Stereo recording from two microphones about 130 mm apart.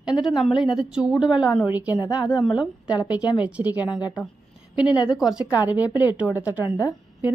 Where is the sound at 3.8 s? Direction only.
30° left (ahead or behind).